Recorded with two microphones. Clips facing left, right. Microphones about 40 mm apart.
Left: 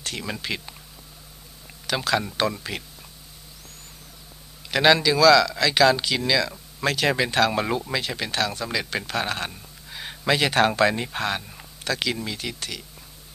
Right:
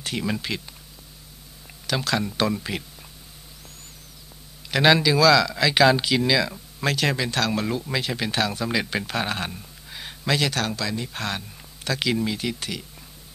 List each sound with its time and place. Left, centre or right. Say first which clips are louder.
0.0 s speech: right 4 dB; centre
1.9 s speech: left 1 dB; centre
4.6 s speech: even; centre
7.2 s speech: left 3 dB; centre
7.9 s speech: right 1 dB; centre
10.2 s speech: left 2 dB; centre
10.5 s speech: left 8 dB; left
11.1 s speech: left 3 dB; centre
11.8 s speech: right 2 dB; centre